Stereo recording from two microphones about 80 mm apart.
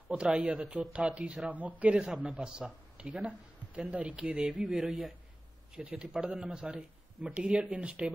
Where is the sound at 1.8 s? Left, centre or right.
Centre.